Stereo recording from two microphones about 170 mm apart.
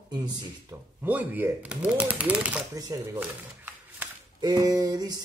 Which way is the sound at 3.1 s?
10° right (ahead or behind).